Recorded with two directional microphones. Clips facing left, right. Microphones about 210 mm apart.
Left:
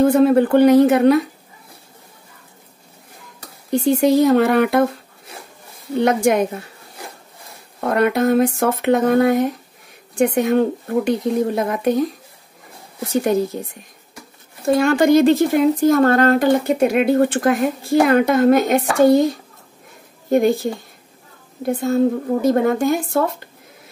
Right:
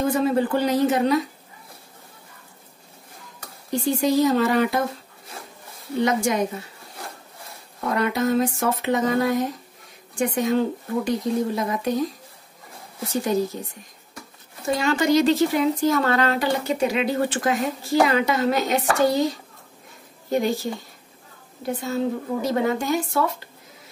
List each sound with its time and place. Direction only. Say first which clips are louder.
0.0 s speech: left 8 dB; 60° left (ahead or behind)
3.8 s speech: left 5 dB; 60° left (ahead or behind)
5.9 s speech: left 6 dB; 60° left (ahead or behind)
7.8 s speech: left 6 dB; 60° left (ahead or behind)
14.7 s speech: left 6 dB; 55° left (ahead or behind)